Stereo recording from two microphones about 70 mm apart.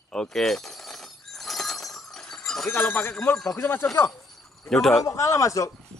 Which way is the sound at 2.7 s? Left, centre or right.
Left.